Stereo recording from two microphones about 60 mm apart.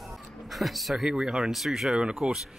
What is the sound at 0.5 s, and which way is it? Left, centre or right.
Speech, centre.